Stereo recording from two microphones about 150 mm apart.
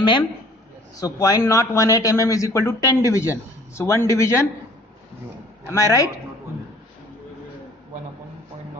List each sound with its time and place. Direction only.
0.9 s a man's voice: 25° left (ahead or behind)
5.7 s a man's voice: 20° left (ahead or behind)